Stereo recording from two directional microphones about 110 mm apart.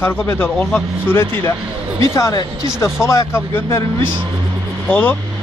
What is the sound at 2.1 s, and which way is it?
Speech, 30° left (ahead or behind).